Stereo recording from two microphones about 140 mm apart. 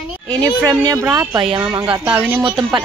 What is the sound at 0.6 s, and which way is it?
Speech, 25° right (ahead or behind).